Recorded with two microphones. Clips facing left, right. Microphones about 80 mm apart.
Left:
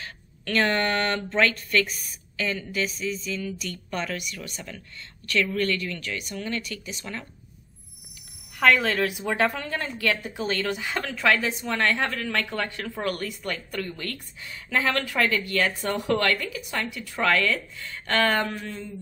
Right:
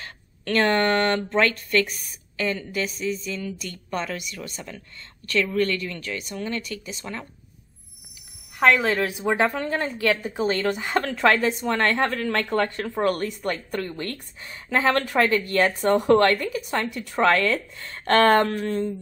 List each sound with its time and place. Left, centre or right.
0.0 s speech: right
8.7 s a woman's voice: centre
9.0 s speech: right
12.8 s speech: right
13.1 s speech: right
16.9 s speech: right
17.2 s speech: right
17.7 s speech: right